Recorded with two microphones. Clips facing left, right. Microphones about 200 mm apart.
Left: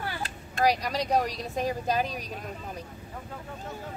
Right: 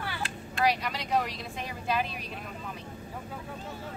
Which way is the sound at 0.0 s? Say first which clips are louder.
Left 1 dB; 40° left (ahead or behind).